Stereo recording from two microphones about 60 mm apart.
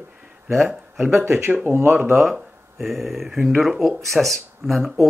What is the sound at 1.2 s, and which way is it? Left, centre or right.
Speech, right.